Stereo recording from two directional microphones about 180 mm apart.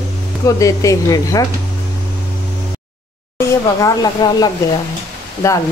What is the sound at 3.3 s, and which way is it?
Speech, 20° left (ahead or behind).